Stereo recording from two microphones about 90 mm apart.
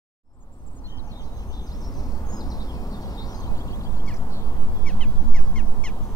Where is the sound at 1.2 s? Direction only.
45° left (ahead or behind).